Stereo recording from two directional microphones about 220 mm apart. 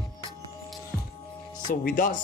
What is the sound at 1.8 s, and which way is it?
Speech, 40° left (ahead or behind).